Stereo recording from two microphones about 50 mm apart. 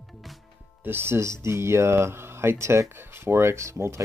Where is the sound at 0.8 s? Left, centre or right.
Right.